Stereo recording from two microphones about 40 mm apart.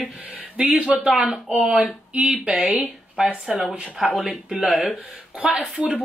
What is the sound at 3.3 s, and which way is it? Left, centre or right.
Speech, right.